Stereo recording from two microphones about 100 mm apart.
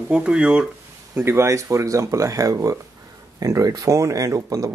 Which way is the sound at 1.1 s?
25° right (ahead or behind).